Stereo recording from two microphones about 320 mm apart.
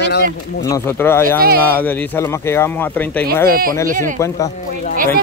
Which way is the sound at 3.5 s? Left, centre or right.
Right.